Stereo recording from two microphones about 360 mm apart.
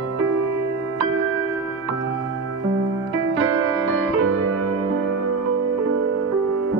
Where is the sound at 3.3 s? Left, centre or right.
Right.